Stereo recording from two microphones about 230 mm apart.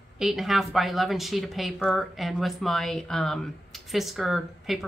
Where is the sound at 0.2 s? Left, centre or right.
Centre.